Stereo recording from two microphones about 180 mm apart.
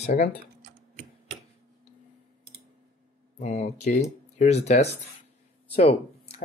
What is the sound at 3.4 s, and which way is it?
Speech, 40° left (ahead or behind).